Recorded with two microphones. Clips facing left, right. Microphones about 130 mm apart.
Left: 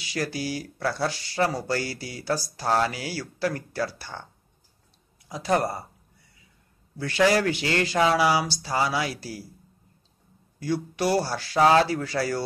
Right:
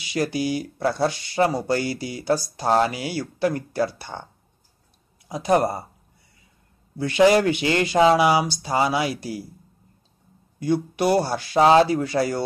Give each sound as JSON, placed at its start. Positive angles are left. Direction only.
{"t": 0.1, "sound": "speech", "side_deg": -20}
{"t": 5.3, "sound": "speech", "side_deg": -20}
{"t": 7.0, "sound": "speech", "side_deg": -20}
{"t": 10.6, "sound": "speech", "side_deg": -20}